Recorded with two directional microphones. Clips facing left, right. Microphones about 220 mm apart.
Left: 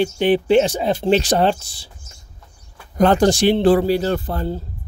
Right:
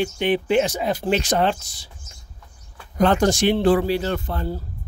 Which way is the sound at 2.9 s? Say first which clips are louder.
Left 3 dB; 40° left (ahead or behind).